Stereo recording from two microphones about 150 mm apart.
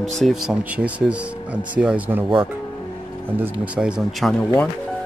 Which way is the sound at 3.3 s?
10° right (ahead or behind).